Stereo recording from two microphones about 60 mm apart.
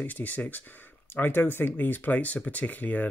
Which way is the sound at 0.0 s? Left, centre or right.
Left.